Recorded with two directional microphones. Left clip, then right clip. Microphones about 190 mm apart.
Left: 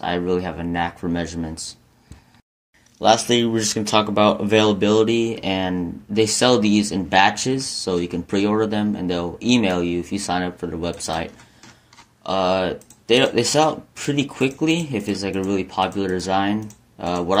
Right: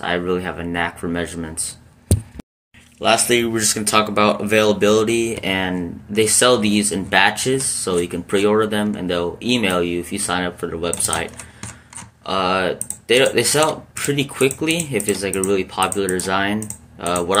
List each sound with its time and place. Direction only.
0.0 s speech: 45° left (ahead or behind)
3.0 s speech: 45° left (ahead or behind)
12.3 s speech: 50° left (ahead or behind)